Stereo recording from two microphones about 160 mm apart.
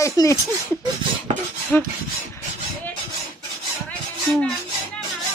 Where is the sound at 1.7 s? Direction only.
10° left (ahead or behind).